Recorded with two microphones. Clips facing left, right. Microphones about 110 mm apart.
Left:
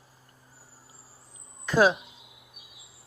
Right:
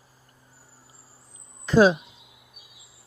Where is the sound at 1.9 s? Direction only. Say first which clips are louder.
Right 4 dB; centre (ahead or behind).